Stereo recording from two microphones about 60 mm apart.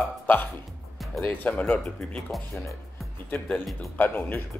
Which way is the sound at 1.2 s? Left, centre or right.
Left.